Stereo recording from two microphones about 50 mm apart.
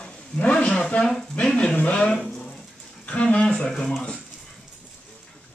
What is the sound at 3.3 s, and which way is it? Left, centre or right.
Speech, left.